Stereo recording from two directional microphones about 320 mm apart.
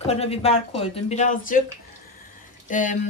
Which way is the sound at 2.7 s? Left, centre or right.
Left.